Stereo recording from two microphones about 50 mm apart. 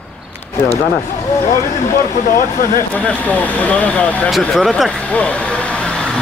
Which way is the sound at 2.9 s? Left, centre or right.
Left.